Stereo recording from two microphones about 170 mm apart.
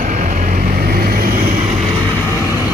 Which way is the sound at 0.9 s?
60° right (ahead or behind).